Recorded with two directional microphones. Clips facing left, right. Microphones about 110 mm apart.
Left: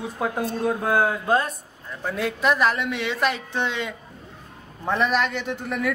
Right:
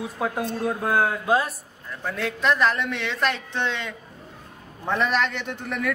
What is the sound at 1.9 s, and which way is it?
A man's voice, 10° left (ahead or behind).